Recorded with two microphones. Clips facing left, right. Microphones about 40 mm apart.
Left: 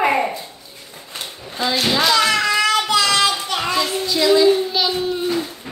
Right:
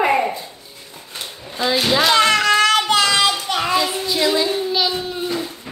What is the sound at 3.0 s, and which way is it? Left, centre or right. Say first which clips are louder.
Child singing: even; right.